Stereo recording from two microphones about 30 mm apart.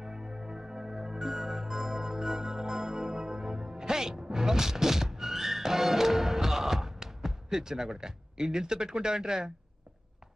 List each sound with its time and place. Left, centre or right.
0.0 s music: centre